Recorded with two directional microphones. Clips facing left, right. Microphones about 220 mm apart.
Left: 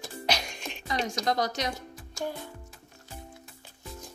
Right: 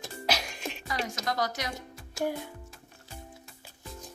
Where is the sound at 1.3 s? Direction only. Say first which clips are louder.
Left 3 dB; 20° left (ahead or behind).